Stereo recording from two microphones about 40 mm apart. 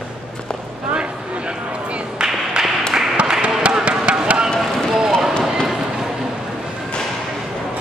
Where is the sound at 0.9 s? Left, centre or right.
Right.